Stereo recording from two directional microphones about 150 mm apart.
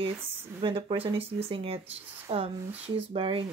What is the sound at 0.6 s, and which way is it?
Speech, 35° right (ahead or behind).